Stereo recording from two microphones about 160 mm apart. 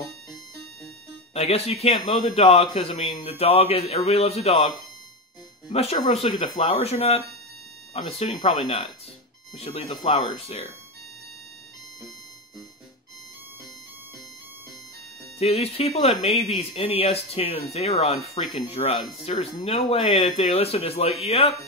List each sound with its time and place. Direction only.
1.3 s speech: 40° left (ahead or behind)
5.7 s speech: 40° left (ahead or behind)
15.3 s speech: 40° left (ahead or behind)